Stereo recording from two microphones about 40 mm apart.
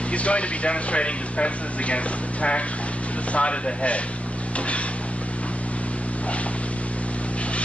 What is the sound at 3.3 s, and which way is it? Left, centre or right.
Speech, left.